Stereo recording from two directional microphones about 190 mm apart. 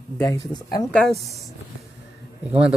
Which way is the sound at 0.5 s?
20° left (ahead or behind).